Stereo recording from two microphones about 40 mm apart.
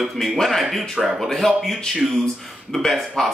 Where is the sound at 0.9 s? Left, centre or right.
Centre.